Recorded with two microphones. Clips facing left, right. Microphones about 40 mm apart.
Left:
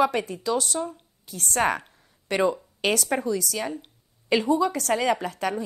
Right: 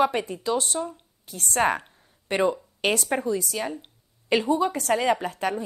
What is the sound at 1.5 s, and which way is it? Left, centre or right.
A woman's voice, right.